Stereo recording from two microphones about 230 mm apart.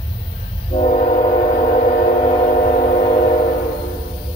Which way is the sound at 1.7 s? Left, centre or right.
Left.